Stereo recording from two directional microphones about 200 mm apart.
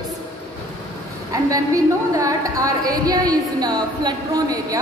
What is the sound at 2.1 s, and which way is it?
A woman's voice, 15° right (ahead or behind).